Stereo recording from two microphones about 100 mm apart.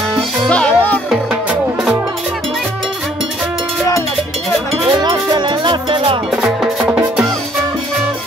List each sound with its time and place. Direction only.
0.5 s music: 10° left (ahead or behind)
1.1 s music: 5° right (ahead or behind)
5.0 s music: 50° right (ahead or behind)
6.3 s music: 5° right (ahead or behind)